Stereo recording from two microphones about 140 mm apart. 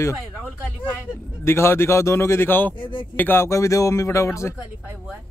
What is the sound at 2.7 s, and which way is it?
Speech, 35° left (ahead or behind).